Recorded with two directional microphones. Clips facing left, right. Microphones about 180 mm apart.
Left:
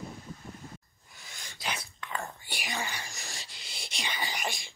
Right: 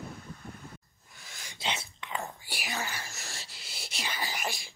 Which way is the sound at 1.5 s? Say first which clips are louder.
Right 2 dB; 25° right (ahead or behind).